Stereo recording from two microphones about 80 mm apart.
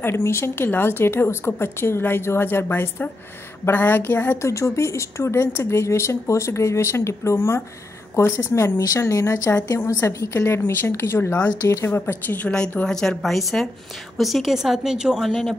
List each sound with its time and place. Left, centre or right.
0.0 s speech: left
4.4 s a woman's voice: left; by 15.5 s centre